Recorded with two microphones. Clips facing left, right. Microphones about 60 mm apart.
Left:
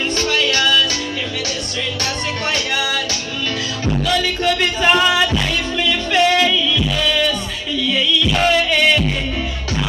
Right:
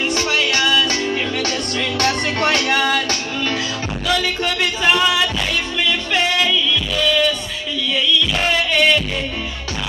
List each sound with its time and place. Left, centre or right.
0.1 s music: centre
2.0 s music: right
4.2 s a sound: centre
4.8 s music: centre